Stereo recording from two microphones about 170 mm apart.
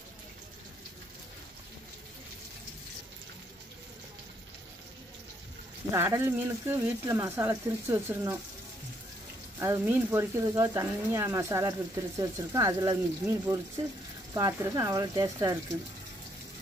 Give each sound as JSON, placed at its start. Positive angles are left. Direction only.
{"t": 5.9, "sound": "speech", "side_deg": -15}
{"t": 9.6, "sound": "speech", "side_deg": -15}